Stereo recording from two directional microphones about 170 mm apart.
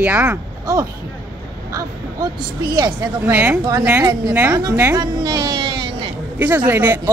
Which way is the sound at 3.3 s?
10° right (ahead or behind).